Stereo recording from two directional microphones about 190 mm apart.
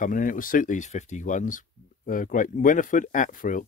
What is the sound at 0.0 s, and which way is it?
Speech, 45° left (ahead or behind).